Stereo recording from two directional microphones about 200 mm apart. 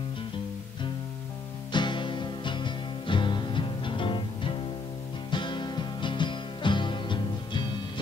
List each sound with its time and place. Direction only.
1.7 s music: 25° left (ahead or behind)